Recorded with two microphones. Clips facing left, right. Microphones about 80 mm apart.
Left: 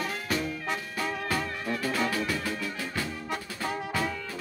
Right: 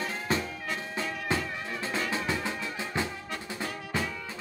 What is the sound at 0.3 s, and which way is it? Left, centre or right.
Music, right.